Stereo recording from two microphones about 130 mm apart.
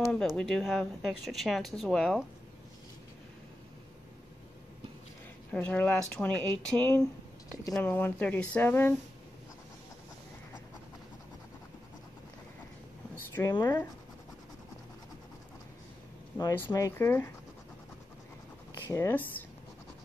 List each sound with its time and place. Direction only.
0.1 s speech: 5° left (ahead or behind)
5.5 s speech: 10° left (ahead or behind)
13.5 s speech: 30° left (ahead or behind)
16.5 s speech: 20° left (ahead or behind)
18.9 s speech: 20° left (ahead or behind)